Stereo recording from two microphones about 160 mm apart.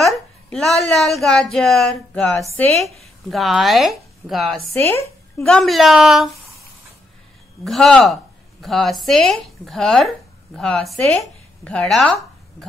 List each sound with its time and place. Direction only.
0.0 s a woman's voice: centre (ahead or behind)
7.6 s speech: centre (ahead or behind)